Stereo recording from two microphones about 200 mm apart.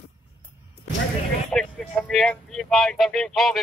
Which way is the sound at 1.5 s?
5° left (ahead or behind).